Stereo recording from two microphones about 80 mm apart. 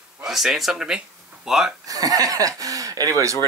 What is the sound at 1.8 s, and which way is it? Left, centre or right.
Speech, right.